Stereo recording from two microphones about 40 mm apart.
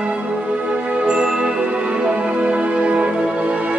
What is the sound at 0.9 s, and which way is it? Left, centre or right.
Music, right.